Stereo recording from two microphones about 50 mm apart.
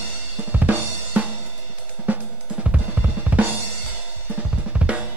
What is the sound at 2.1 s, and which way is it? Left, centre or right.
Drum kit, right.